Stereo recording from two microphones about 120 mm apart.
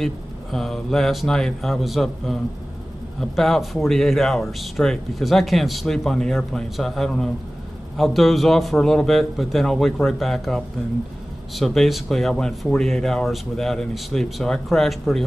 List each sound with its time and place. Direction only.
0.0 s speech: centre (ahead or behind)